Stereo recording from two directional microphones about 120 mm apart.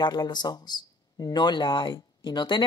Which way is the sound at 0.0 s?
35° left (ahead or behind).